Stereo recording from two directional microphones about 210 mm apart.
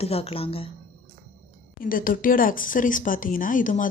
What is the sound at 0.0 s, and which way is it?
Speech, 30° left (ahead or behind).